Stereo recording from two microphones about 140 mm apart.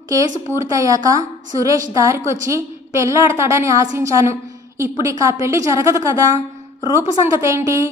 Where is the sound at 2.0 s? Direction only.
20° right (ahead or behind).